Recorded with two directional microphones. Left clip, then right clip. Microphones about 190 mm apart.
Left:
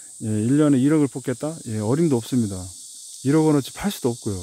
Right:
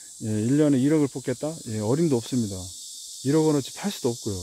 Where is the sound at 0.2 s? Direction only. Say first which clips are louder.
Left 3 dB; 20° left (ahead or behind).